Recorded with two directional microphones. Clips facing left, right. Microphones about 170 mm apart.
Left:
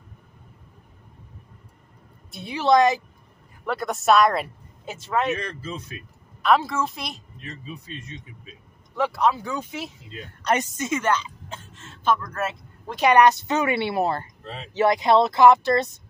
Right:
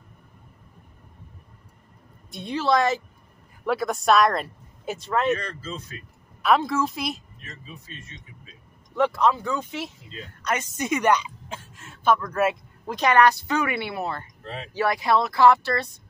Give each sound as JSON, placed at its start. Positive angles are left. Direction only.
{"t": 2.3, "sound": "speech", "side_deg": 5}
{"t": 2.6, "sound": "speech", "side_deg": 20}
{"t": 3.6, "sound": "speech", "side_deg": 0}
{"t": 5.6, "sound": "speech", "side_deg": 15}
{"t": 6.4, "sound": "speech", "side_deg": 0}
{"t": 8.9, "sound": "speech", "side_deg": 5}
{"t": 10.8, "sound": "speech", "side_deg": -15}
{"t": 12.9, "sound": "speech", "side_deg": 15}
{"t": 14.7, "sound": "speech", "side_deg": 20}